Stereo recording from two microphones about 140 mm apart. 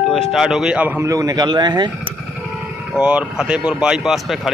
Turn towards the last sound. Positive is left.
turn(degrees=0)  # may be behind; listen again after turning